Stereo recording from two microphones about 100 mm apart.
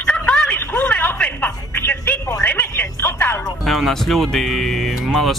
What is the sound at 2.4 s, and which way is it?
Music, 20° left (ahead or behind).